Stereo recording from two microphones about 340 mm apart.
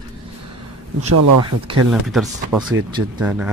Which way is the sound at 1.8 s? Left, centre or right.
Centre.